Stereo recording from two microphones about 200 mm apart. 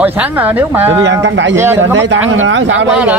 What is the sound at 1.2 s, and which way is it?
Speech, 65° right (ahead or behind).